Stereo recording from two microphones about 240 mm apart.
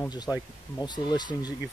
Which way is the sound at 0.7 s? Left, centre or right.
Centre.